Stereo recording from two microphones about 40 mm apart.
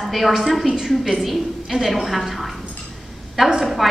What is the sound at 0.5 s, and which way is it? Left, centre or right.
A woman's voice, centre.